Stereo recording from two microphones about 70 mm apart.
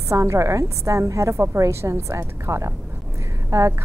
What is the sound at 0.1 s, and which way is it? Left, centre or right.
A woman's voice, right.